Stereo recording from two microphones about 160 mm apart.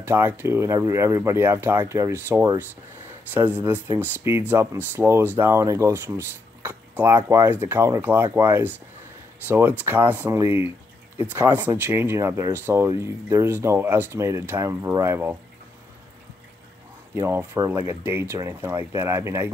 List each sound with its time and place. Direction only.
0.0 s speech: 15° right (ahead or behind)
17.1 s speech: 15° right (ahead or behind)